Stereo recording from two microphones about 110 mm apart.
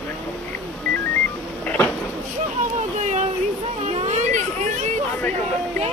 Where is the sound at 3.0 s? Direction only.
90° right.